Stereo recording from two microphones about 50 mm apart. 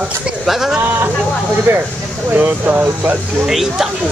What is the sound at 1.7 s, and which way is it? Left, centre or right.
Speech, right.